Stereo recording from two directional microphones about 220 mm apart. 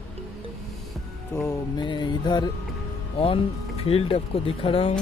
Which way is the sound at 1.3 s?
15° left (ahead or behind).